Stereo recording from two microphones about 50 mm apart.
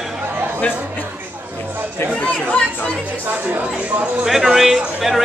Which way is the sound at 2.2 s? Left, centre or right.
Left.